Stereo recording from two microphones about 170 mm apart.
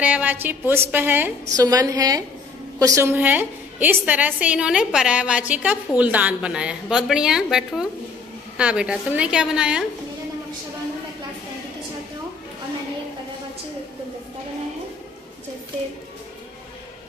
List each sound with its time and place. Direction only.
0.0 s a woman's voice: 10° right (ahead or behind)
1.6 s a woman's voice: 20° right (ahead or behind); by 9.8 s 5° right (ahead or behind)